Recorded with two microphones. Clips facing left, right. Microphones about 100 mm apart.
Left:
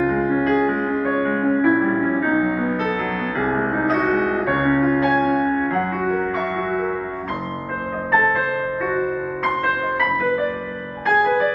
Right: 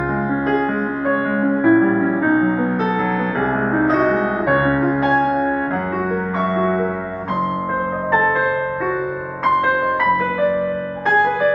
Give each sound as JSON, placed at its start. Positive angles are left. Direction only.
{"t": 0.3, "sound": "music", "side_deg": -30}
{"t": 4.6, "sound": "music", "side_deg": -30}